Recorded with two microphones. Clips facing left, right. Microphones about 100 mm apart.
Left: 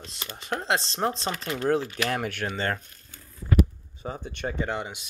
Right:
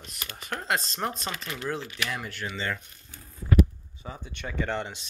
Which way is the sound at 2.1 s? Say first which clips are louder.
Left 5 dB; 60° left (ahead or behind).